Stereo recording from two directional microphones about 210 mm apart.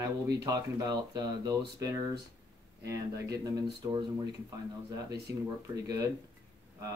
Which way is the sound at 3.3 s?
20° right (ahead or behind).